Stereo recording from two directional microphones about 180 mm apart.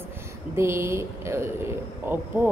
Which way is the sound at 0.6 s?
15° right (ahead or behind).